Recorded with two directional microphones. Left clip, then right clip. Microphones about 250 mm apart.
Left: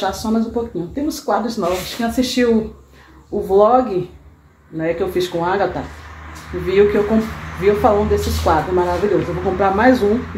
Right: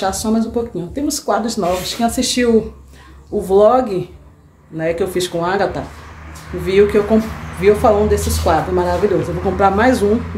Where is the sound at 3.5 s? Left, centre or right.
Centre.